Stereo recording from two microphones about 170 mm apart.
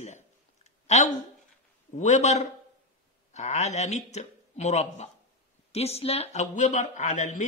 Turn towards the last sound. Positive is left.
turn(degrees=45)  # may be behind; listen again after turning